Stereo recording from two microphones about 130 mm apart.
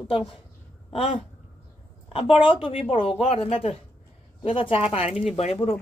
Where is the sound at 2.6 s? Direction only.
45° left (ahead or behind).